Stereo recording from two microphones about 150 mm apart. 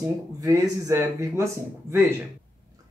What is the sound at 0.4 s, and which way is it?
Speech, 20° right (ahead or behind).